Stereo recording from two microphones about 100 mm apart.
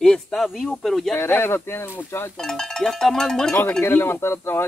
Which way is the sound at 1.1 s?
25° left (ahead or behind).